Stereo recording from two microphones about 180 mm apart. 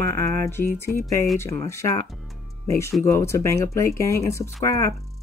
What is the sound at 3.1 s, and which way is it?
Speech, 15° left (ahead or behind).